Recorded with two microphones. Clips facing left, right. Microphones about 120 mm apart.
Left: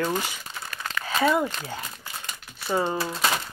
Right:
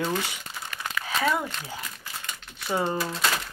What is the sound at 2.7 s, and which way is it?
Speech, 20° left (ahead or behind).